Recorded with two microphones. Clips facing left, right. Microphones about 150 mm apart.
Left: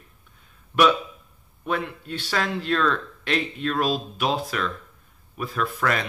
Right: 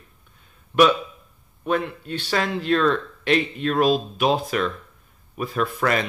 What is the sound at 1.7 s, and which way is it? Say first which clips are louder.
Speech: right 4 dB; centre (ahead or behind).